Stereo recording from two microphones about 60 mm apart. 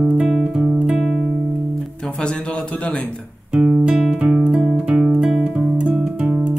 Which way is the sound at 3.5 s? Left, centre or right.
Centre.